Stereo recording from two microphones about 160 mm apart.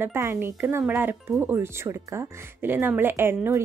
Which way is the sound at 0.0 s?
15° right (ahead or behind).